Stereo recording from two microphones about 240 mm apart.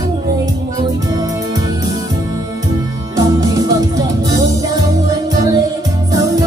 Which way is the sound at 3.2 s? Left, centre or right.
Centre.